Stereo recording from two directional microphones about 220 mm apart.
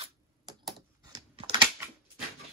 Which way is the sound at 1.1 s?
20° right (ahead or behind).